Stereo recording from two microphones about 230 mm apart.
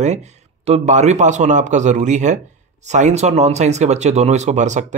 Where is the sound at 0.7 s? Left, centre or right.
Right.